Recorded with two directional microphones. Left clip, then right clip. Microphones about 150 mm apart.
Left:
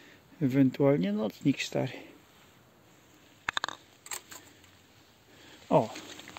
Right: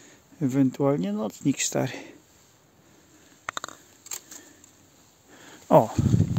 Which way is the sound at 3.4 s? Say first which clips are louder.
Left 2 dB; 10° right (ahead or behind).